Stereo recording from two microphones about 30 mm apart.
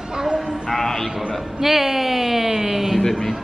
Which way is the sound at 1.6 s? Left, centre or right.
Centre.